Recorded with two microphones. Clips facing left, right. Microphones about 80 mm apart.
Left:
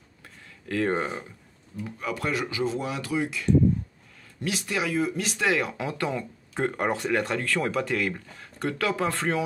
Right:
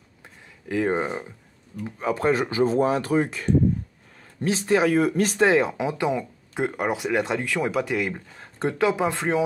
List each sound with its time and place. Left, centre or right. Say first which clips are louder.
0.2 s a sound: right 2 dB; centre
1.9 s speech: right 7 dB; right
4.9 s speech: right 6 dB; right; by 9.4 s centre